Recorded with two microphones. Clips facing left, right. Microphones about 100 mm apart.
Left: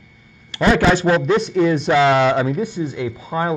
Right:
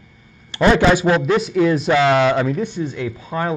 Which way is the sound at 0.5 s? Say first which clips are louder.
Right 3 dB; 30° right (ahead or behind).